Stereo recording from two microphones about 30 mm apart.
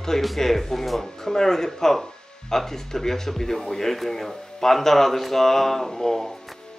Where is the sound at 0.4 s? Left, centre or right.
Centre.